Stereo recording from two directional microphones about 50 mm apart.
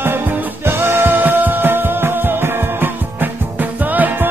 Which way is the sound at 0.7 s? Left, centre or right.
Right.